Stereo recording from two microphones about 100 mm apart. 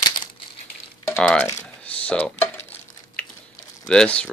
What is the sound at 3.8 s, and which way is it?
Speech, 10° left (ahead or behind).